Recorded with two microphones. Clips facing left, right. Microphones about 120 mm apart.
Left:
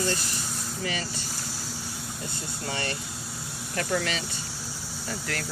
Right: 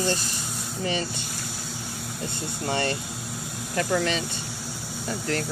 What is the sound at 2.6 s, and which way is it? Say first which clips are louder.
Speech: right 6 dB; 25° right (ahead or behind).